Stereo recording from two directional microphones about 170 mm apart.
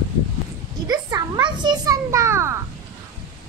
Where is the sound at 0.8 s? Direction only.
20° right (ahead or behind).